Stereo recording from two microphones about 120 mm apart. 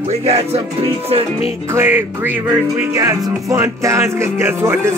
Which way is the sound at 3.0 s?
30° right (ahead or behind).